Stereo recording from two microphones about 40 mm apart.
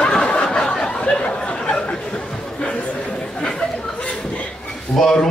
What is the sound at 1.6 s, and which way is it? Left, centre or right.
Chatter, centre.